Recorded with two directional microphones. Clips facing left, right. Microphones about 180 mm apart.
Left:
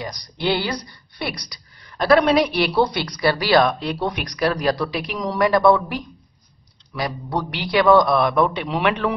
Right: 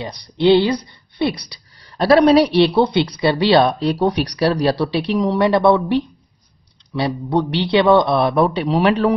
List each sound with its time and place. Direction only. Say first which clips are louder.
0.0 s a man's voice: right 8 dB; 25° right (ahead or behind)